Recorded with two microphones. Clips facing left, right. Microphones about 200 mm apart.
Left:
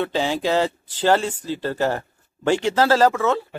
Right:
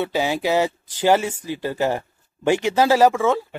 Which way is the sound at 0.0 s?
10° right (ahead or behind).